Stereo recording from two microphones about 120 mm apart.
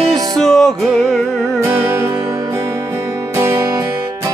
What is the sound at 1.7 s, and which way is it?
Music, 25° right (ahead or behind).